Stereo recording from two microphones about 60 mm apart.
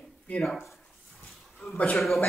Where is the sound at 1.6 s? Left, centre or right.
Centre.